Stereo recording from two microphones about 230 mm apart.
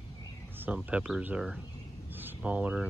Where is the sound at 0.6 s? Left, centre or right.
Centre.